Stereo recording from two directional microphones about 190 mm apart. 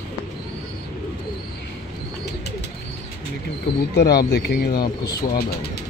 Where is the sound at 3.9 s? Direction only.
55° left (ahead or behind).